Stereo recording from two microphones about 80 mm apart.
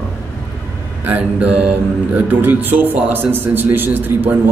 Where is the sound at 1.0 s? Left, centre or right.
Right.